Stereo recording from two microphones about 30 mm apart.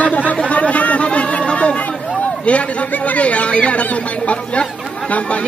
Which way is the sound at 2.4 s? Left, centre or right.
Left.